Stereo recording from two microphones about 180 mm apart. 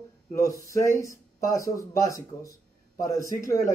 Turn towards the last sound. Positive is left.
turn(degrees=20)  # may be behind; listen again after turning